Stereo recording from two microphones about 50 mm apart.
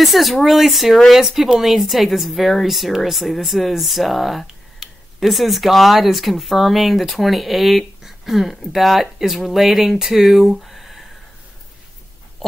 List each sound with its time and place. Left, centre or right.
0.0 s speech: centre